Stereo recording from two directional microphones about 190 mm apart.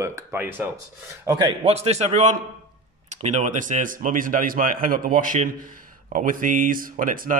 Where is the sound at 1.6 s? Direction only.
35° right (ahead or behind).